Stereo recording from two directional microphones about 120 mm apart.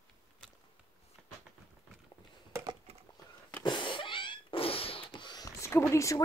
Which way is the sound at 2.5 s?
25° right (ahead or behind).